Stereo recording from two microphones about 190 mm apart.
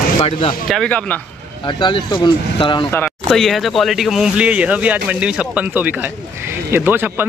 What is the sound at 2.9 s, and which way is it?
Speech, 5° left (ahead or behind).